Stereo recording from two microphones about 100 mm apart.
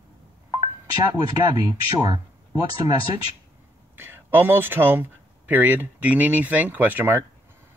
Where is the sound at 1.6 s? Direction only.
40° right (ahead or behind).